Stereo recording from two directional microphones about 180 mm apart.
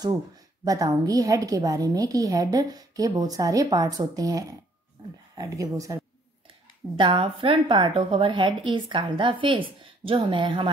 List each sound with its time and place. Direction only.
0.7 s a woman's voice: 20° right (ahead or behind)
7.0 s a woman's voice: 30° right (ahead or behind)